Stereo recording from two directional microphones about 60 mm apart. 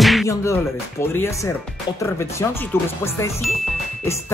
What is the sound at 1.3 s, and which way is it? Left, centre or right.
Speech, left.